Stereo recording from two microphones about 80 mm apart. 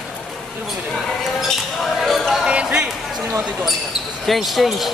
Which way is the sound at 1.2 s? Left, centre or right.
Centre.